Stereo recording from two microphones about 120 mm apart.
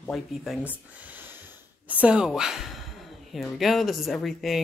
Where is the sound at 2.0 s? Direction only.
5° right (ahead or behind).